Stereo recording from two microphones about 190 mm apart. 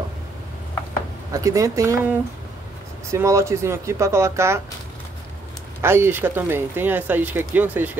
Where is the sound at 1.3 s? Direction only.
15° right (ahead or behind).